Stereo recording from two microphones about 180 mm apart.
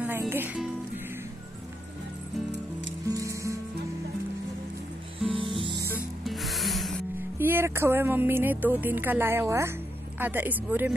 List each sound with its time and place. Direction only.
0.0 s music: 10° right (ahead or behind)
3.1 s music: 20° right (ahead or behind)
5.3 s music: 30° right (ahead or behind)
5.9 s rub: centre (ahead or behind)
7.3 s speech: 15° right (ahead or behind)